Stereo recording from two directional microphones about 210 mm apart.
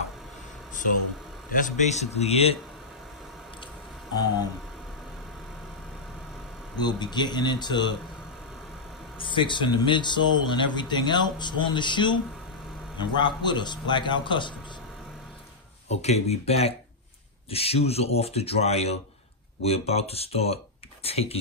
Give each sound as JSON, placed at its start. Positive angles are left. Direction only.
{"t": 1.5, "sound": "a man's voice", "side_deg": 35}
{"t": 4.1, "sound": "speech", "side_deg": 20}
{"t": 6.8, "sound": "speech", "side_deg": 20}
{"t": 9.2, "sound": "speech", "side_deg": 25}
{"t": 15.9, "sound": "a man's voice", "side_deg": 30}